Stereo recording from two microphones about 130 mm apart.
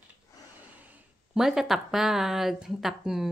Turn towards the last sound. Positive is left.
turn(degrees=0)  # may be behind; listen again after turning